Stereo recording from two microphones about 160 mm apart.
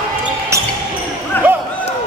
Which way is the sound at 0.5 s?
20° right (ahead or behind).